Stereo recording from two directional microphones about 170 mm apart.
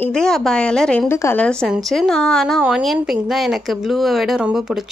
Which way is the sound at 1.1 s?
15° left (ahead or behind).